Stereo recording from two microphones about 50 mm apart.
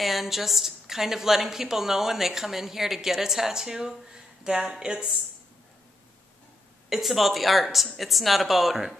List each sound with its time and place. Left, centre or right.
0.0 s a woman's voice: centre
6.9 s speech: centre